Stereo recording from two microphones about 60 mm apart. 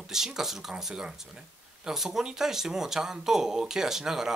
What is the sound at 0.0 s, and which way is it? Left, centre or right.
Speech, centre.